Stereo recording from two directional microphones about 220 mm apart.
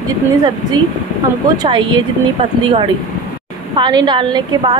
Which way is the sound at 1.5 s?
20° right (ahead or behind).